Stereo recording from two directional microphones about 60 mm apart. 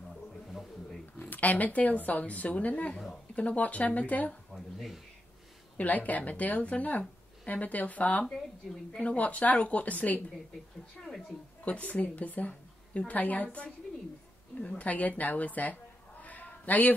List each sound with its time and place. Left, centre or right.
0.1 s a sound: centre
1.3 s speech: left
4.5 s speech: centre
5.8 s speech: left
11.1 s speech: centre
11.6 s a woman's voice: left
14.8 s a woman's voice: left